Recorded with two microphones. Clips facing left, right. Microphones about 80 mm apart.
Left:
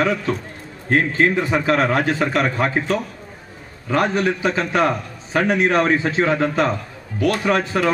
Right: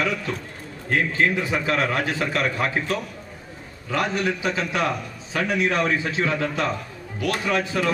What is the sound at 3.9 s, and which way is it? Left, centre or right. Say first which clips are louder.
A man's voice: left 5 dB; left.